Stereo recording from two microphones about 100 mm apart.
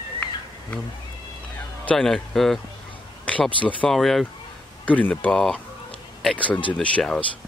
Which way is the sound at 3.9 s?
Centre (ahead or behind).